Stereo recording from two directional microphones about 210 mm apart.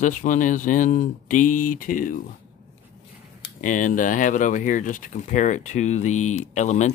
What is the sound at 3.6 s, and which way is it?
Speech, 40° left (ahead or behind).